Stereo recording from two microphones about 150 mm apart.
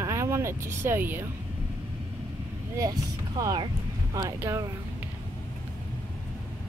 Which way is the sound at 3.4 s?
25° right (ahead or behind).